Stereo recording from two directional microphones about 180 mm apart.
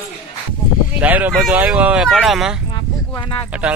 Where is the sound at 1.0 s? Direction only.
10° right (ahead or behind).